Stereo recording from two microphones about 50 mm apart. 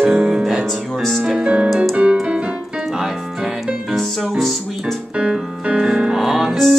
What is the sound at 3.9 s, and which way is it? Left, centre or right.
Music, centre.